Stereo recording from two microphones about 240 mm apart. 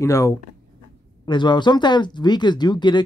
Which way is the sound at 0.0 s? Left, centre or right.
Centre.